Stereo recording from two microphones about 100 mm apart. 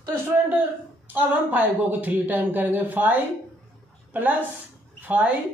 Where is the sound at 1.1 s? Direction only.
20° right (ahead or behind).